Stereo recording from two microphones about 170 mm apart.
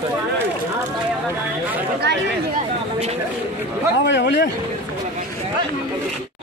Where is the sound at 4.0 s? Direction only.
90° left.